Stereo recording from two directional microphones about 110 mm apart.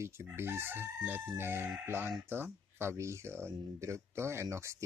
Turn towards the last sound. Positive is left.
turn(degrees=-25)  # may be behind; listen again after turning